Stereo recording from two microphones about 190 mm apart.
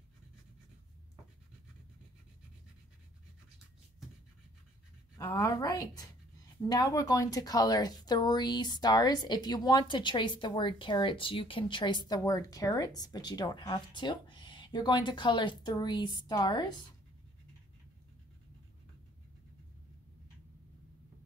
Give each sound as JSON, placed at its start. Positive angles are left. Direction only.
{"t": 5.1, "sound": "speech", "side_deg": 15}